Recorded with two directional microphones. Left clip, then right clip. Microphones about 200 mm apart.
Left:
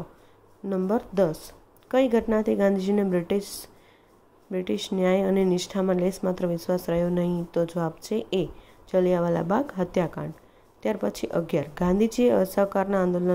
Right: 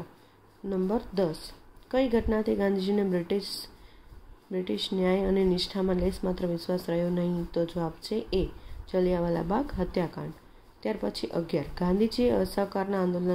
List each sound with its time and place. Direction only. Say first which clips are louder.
0.7 s speech: left 3 dB; 25° left (ahead or behind)